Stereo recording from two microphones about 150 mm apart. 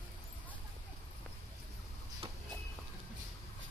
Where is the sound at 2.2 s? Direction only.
35° right (ahead or behind).